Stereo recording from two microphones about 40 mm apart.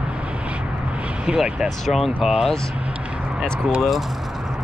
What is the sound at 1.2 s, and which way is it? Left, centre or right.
Speech, centre.